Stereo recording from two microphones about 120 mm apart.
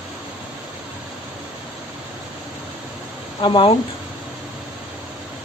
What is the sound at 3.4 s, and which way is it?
Speech, 45° left (ahead or behind).